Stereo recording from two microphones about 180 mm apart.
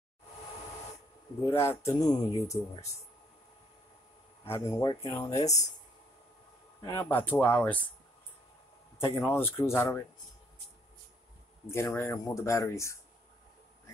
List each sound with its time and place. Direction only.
1.5 s speech: 15° left (ahead or behind)
4.5 s speech: 20° left (ahead or behind)
5.4 s speech: 40° left (ahead or behind)
6.8 s speech: 15° left (ahead or behind)
8.9 s speech: 15° left (ahead or behind)
11.7 s speech: 15° left (ahead or behind)